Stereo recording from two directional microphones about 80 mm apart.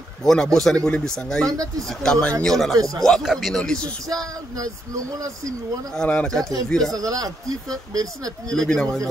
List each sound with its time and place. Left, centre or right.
0.2 s speech: centre
1.4 s speech: right
1.9 s speech: centre
2.7 s speech: right
3.0 s speech: centre
4.1 s speech: right
5.9 s speech: centre
6.9 s speech: right
8.5 s speech: centre